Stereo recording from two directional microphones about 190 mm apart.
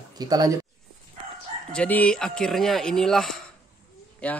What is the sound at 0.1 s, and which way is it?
Speech, 20° right (ahead or behind).